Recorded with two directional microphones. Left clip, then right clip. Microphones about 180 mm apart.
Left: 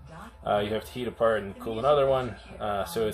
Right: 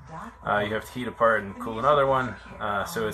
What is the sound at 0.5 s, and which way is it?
Speech, 20° left (ahead or behind).